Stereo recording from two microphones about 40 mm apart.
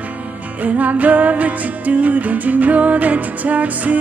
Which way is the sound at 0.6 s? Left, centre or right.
Right.